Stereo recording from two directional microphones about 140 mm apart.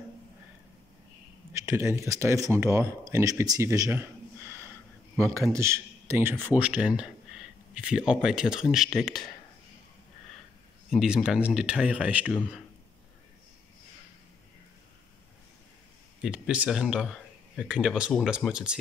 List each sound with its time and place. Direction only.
1.5 s speech: 20° right (ahead or behind)
5.5 s a man's voice: 20° right (ahead or behind); by 9.3 s centre (ahead or behind)
10.9 s speech: centre (ahead or behind)
16.2 s speech: 5° right (ahead or behind)